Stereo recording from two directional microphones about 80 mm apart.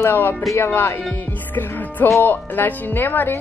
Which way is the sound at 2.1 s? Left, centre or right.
Left.